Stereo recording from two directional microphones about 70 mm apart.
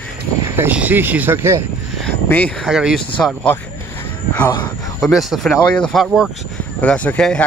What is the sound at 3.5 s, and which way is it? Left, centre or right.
Speech, left.